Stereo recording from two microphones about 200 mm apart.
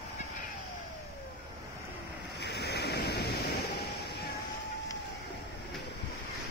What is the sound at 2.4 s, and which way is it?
Waves, 55° left (ahead or behind).